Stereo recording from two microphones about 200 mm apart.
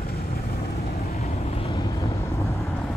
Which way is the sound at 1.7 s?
15° left (ahead or behind).